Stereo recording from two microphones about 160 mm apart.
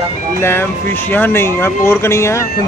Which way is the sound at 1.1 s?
15° left (ahead or behind).